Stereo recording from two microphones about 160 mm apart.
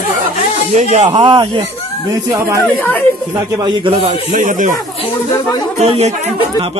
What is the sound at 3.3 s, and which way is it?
Speech, 20° right (ahead or behind).